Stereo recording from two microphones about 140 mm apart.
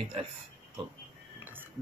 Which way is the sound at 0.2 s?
40° right (ahead or behind).